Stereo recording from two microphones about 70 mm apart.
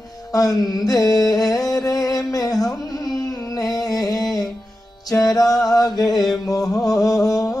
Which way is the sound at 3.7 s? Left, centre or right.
Left.